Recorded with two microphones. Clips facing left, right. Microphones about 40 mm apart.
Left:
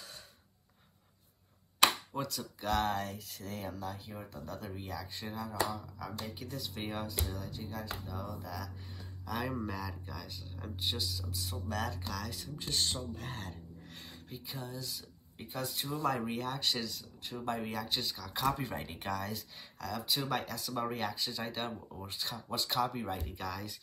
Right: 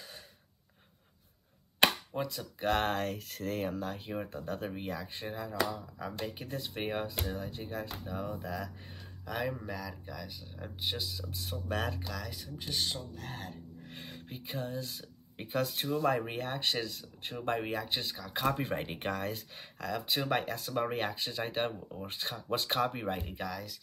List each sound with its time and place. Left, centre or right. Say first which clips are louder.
2.1 s speech: right 2 dB; centre
2.6 s speech: right 2 dB; right
7.2 s speech: right 3 dB; right
9.4 s speech: right 1 dB; centre
11.1 s speech: right 1 dB; right
12.0 s speech: even; centre
13.5 s speech: right 2 dB; right
16.0 s speech: right 2 dB; right